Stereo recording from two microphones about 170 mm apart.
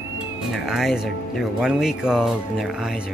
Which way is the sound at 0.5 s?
Centre (ahead or behind).